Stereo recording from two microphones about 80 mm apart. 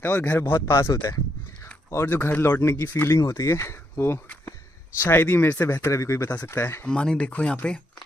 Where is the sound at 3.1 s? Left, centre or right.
Left.